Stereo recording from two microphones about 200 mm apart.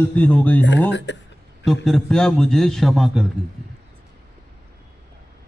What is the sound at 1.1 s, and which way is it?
Speech, 60° left (ahead or behind).